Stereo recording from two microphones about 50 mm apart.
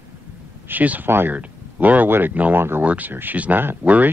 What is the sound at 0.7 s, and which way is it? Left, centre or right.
Speech, right.